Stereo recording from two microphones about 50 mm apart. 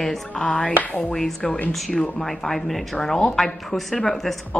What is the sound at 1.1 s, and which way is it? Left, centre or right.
A woman's voice, centre.